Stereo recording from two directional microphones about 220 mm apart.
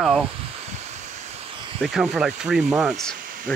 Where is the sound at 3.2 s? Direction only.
40° right (ahead or behind).